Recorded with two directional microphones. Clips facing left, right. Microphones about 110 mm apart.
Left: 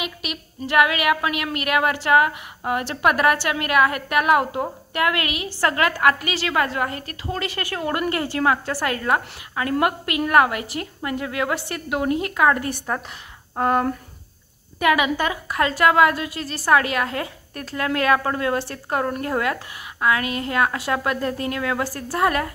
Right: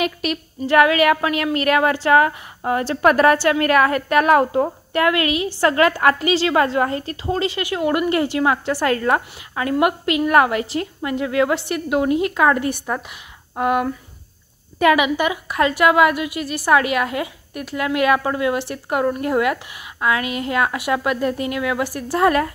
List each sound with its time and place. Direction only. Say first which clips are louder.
0.0 s a woman's voice: right 8 dB; 40° right (ahead or behind); by 13.8 s 10° right (ahead or behind)
14.8 s a woman's voice: right 4 dB; 25° right (ahead or behind)
15.1 s a woman's voice: right 3 dB; 15° right (ahead or behind)